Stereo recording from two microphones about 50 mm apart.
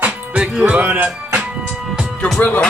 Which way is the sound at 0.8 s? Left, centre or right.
Right.